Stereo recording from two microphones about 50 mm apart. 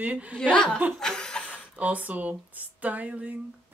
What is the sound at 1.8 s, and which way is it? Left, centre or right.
Speech, right.